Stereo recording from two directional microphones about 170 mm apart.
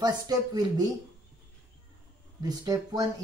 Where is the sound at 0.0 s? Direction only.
25° right (ahead or behind).